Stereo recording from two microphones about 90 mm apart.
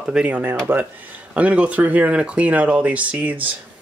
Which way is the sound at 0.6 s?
20° right (ahead or behind).